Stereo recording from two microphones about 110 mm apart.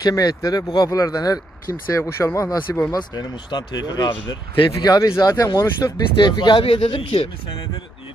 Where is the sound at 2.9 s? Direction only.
40° left (ahead or behind); by 7.6 s 60° left (ahead or behind).